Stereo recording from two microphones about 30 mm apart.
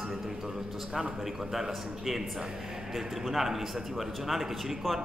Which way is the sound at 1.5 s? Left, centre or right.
Centre.